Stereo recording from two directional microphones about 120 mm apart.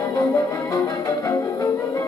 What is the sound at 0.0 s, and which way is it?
Music, 25° left (ahead or behind).